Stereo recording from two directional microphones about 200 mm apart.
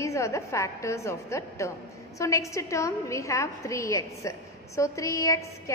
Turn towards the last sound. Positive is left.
turn(degrees=15)  # may be behind; listen again after turning